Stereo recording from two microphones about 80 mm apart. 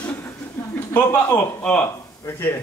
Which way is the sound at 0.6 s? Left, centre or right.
Left.